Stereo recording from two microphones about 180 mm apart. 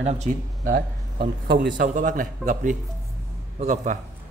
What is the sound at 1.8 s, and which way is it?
A man's voice, 45° right (ahead or behind).